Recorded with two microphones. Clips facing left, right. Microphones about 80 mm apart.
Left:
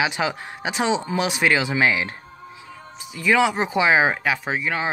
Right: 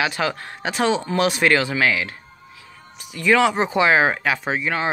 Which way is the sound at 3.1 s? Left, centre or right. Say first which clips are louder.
Right 2 dB; centre.